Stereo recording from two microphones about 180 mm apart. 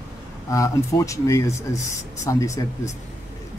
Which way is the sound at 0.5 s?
15° left (ahead or behind).